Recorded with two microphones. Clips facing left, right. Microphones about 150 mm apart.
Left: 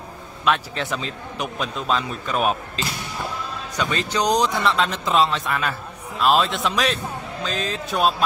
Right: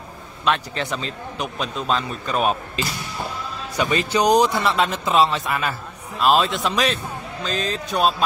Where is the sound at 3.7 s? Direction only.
10° right (ahead or behind).